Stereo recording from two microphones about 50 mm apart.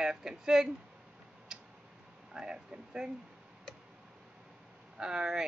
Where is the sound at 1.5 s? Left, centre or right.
Centre.